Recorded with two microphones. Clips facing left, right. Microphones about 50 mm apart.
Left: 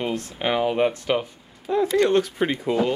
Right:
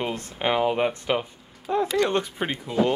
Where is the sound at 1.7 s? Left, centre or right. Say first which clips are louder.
Left 2 dB; right.